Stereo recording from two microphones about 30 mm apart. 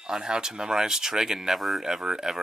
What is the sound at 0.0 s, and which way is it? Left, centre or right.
Speech, right.